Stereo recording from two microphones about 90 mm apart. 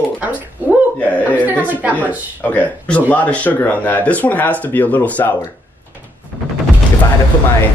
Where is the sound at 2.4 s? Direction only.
20° left (ahead or behind).